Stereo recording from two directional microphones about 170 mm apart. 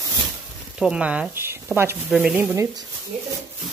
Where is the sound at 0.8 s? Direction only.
5° right (ahead or behind).